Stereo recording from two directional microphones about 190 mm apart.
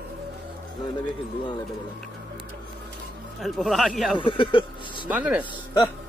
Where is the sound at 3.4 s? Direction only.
Centre (ahead or behind).